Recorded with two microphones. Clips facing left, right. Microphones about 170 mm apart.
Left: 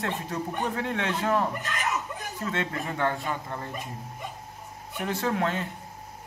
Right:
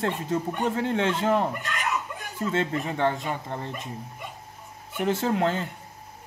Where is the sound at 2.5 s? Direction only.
25° right (ahead or behind).